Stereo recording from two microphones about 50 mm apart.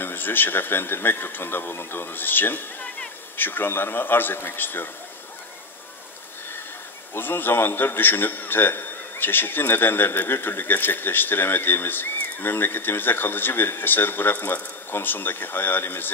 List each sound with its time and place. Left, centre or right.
0.0 s a man's voice: left
7.2 s a man's voice: left